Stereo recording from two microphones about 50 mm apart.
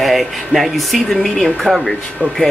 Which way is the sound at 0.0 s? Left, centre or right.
Centre.